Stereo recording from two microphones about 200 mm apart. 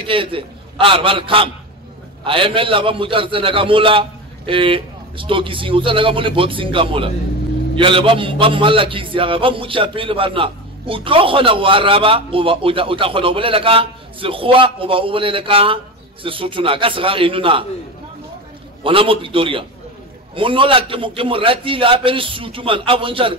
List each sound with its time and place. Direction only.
0.0 s a man's voice: 25° right (ahead or behind)
18.9 s a man's voice: 25° right (ahead or behind)